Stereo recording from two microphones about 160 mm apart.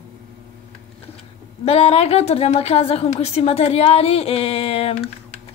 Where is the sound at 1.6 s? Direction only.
40° left (ahead or behind).